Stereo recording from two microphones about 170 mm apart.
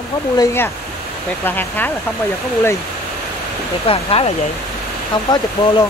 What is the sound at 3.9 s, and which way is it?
Speech, 35° left (ahead or behind).